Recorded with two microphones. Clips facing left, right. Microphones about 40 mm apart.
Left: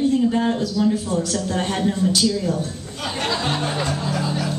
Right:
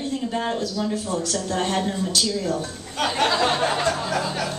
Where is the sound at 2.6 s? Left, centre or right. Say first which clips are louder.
Right 2 dB; right.